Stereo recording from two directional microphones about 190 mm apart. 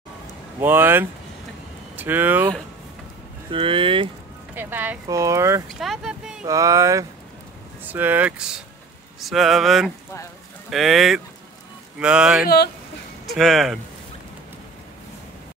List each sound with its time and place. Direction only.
0.6 s speech: 10° right (ahead or behind)
3.5 s speech: 25° right (ahead or behind)
4.6 s speech: 10° right (ahead or behind)
5.8 s speech: centre (ahead or behind)
6.4 s speech: 15° right (ahead or behind); by 13.7 s centre (ahead or behind)